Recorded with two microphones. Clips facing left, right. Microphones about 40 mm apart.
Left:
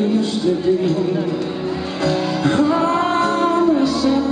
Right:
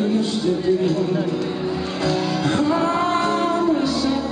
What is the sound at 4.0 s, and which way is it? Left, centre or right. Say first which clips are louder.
Music: left 4 dB; centre.